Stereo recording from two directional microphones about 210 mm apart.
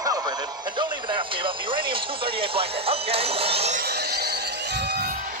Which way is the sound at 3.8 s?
50° right (ahead or behind).